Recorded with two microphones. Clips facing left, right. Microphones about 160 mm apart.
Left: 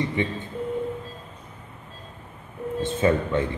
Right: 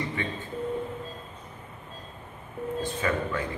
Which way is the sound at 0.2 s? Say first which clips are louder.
Left 7 dB; 20° left (ahead or behind).